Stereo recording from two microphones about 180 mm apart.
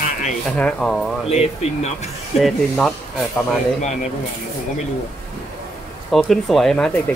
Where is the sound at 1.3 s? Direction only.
35° left (ahead or behind).